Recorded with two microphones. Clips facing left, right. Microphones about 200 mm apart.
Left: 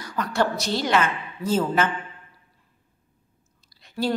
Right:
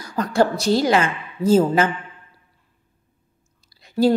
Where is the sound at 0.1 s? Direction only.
40° right (ahead or behind).